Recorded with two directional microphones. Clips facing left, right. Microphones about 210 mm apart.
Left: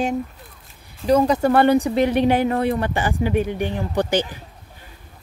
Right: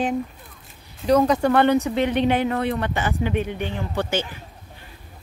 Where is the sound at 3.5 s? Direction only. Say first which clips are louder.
Left 4 dB; 15° left (ahead or behind).